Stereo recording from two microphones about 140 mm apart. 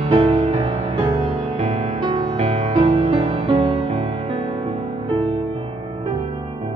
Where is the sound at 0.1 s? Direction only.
45° right (ahead or behind).